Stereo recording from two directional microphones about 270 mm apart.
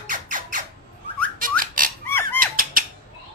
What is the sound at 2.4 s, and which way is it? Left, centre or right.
Squawk, right.